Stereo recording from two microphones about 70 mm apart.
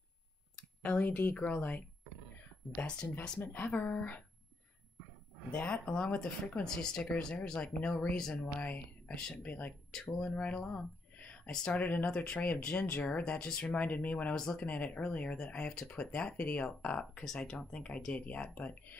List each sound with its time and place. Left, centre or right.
0.8 s speech: left
5.5 s speech: centre
14.3 s speech: centre
14.7 s speech: left